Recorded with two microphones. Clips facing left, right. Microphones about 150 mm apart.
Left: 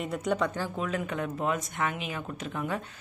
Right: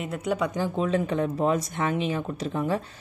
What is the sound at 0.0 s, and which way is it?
Speech, centre (ahead or behind).